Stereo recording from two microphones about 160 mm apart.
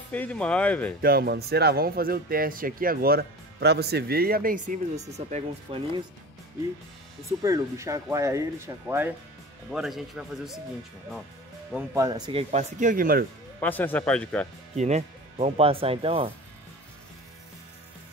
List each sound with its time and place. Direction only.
0.1 s speech: 10° left (ahead or behind)
1.0 s speech: 75° right (ahead or behind); by 5.0 s 55° right (ahead or behind)
5.1 s speech: 45° right (ahead or behind)
7.2 s speech: 20° right (ahead or behind)
9.7 s speech: centre (ahead or behind)
11.9 s speech: 25° right (ahead or behind); by 13.2 s 60° right (ahead or behind)
13.6 s speech: 10° left (ahead or behind)
14.8 s speech: 45° right (ahead or behind)